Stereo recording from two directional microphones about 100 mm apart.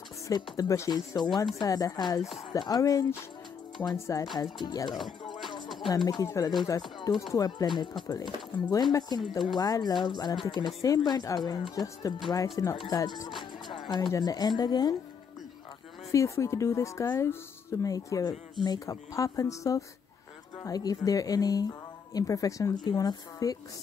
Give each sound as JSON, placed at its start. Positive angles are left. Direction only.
{"t": 0.6, "sound": "speech", "side_deg": 35}
{"t": 5.2, "sound": "music", "side_deg": 50}
{"t": 6.0, "sound": "speech", "side_deg": 35}
{"t": 6.6, "sound": "speech", "side_deg": 45}
{"t": 16.1, "sound": "speech", "side_deg": 30}